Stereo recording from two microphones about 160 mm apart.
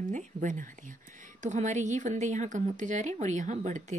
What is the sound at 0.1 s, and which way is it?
Speech, 50° right (ahead or behind).